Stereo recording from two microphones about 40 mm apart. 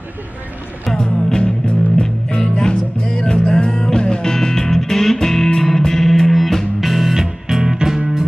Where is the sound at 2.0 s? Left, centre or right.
Left; by 8.3 s centre.